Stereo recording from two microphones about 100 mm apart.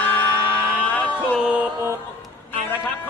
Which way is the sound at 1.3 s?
10° right (ahead or behind).